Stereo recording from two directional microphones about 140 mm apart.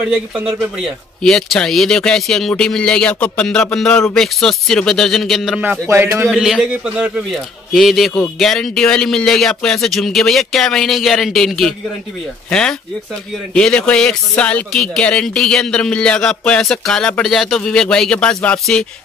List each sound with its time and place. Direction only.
0.1 s a man's voice: 10° right (ahead or behind)
5.6 s speech: 15° right (ahead or behind)
6.3 s a man's voice: 5° right (ahead or behind)